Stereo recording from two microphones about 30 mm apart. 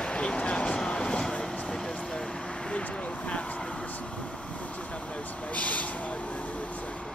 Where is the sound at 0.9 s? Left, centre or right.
Left.